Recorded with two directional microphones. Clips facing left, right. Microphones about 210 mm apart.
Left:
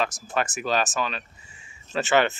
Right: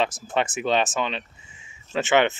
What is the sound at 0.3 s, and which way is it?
Speech, 25° right (ahead or behind).